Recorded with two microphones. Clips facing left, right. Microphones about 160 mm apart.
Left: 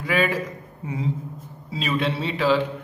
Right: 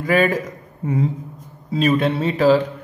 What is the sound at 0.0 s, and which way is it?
Speech, 45° right (ahead or behind).